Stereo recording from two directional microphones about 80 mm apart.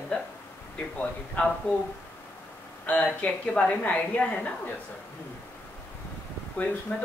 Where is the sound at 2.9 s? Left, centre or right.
Centre.